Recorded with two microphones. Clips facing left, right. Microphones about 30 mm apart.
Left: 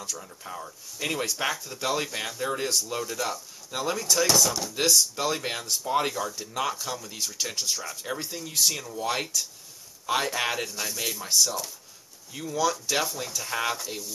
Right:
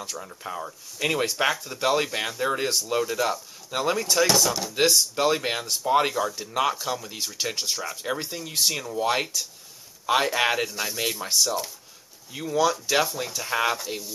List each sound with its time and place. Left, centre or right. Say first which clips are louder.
0.0 s speech: right 3 dB; right